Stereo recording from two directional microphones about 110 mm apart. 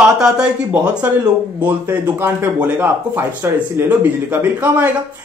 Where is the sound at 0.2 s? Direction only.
10° right (ahead or behind).